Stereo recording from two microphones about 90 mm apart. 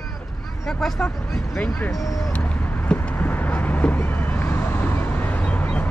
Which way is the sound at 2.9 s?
20° left (ahead or behind).